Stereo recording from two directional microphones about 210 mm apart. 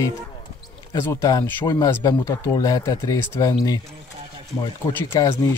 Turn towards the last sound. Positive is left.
turn(degrees=15)  # may be behind; listen again after turning